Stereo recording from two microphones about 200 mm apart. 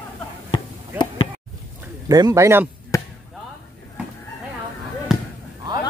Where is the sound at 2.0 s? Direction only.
20° right (ahead or behind).